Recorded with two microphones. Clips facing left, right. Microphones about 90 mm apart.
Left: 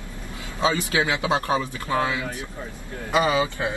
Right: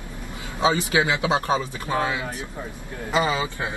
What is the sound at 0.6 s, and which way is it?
Speech, 20° right (ahead or behind).